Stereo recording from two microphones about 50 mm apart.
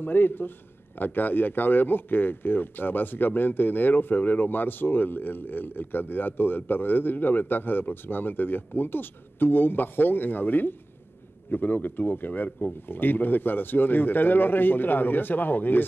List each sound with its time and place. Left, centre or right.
0.0 s a man's voice: left